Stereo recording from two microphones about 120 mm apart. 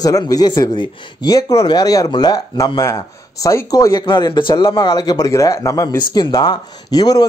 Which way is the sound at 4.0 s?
40° left (ahead or behind).